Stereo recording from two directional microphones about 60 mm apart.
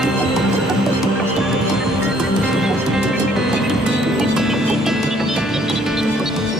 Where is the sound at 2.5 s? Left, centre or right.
Centre.